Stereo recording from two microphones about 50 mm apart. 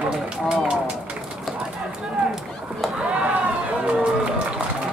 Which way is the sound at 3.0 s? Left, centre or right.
Right.